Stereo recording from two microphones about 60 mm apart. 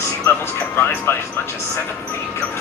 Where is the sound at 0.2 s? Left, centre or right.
Left.